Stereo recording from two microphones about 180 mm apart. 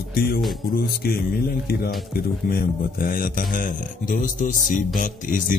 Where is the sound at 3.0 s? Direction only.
50° left (ahead or behind).